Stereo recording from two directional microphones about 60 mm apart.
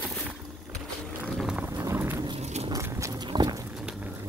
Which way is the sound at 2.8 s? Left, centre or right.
Right.